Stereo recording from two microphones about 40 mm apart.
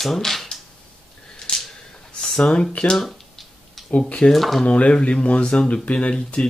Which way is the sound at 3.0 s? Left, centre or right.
Centre.